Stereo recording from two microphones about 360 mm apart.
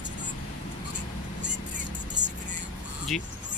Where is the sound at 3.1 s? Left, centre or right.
Centre.